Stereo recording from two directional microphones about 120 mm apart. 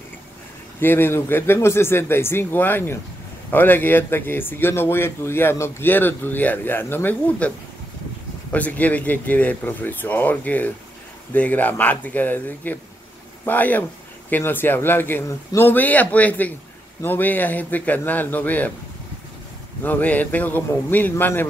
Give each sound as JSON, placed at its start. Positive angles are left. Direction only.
{"t": 0.7, "sound": "a man's voice", "side_deg": 20}
{"t": 19.8, "sound": "a man's voice", "side_deg": 15}